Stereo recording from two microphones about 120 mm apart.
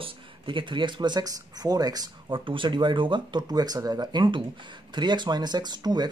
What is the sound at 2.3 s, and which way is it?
Speech, 45° right (ahead or behind).